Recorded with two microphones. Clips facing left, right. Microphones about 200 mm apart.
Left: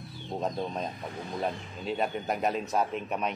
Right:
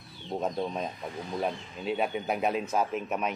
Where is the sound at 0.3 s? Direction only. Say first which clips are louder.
Right 1 dB; centre (ahead or behind).